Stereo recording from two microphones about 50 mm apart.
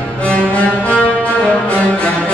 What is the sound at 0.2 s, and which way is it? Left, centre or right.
Music, left.